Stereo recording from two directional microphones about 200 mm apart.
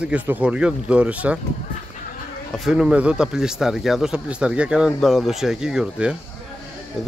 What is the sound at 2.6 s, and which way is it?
Speech, 5° right (ahead or behind).